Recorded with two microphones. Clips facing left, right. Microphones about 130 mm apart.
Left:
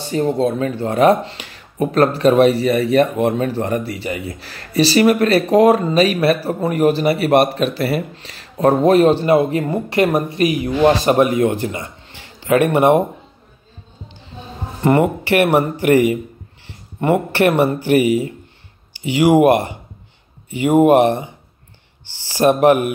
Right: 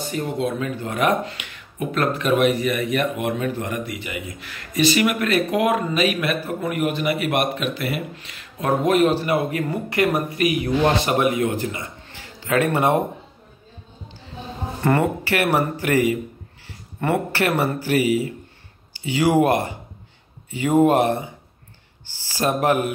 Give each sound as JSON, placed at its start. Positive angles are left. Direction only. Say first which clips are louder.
{"t": 0.0, "sound": "speech", "louder": "left 7 dB", "side_deg": 35}
{"t": 14.8, "sound": "speech", "louder": "left 5 dB", "side_deg": 20}
{"t": 20.6, "sound": "speech", "louder": "left 5 dB", "side_deg": 15}
{"t": 22.4, "sound": "speech", "louder": "left 7 dB", "side_deg": 25}